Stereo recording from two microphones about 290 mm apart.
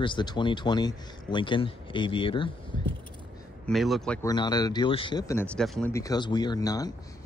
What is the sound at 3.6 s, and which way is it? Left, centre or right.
Speech, centre.